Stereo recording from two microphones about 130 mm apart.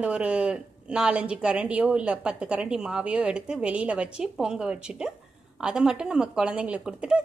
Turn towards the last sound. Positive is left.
turn(degrees=-5)  # may be behind; listen again after turning